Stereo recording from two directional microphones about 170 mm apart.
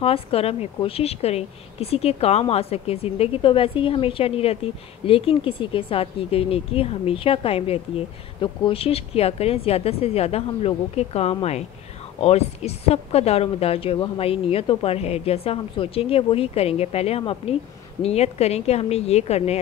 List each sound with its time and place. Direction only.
0.0 s a woman's voice: 35° left (ahead or behind)